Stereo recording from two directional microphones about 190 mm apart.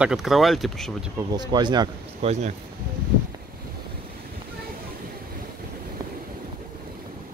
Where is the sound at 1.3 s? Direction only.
20° right (ahead or behind).